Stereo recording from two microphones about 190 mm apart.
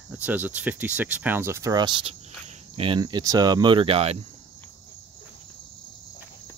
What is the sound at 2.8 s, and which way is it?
Cricket, 25° right (ahead or behind).